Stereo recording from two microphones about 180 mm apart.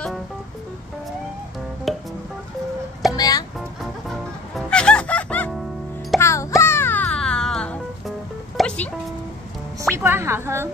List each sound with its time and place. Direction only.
1.9 s music: centre (ahead or behind)
3.1 s music: 20° left (ahead or behind)
3.8 s music: centre (ahead or behind)
9.9 s music: 15° right (ahead or behind)